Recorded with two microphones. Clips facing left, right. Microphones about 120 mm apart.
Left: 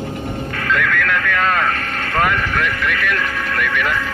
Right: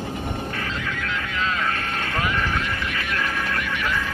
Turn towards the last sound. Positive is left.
turn(degrees=65)  # may be behind; listen again after turning